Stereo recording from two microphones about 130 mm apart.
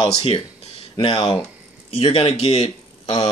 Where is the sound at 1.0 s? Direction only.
40° left (ahead or behind).